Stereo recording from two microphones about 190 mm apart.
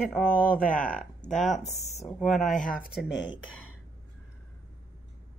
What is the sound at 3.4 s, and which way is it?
Speech, 90° left.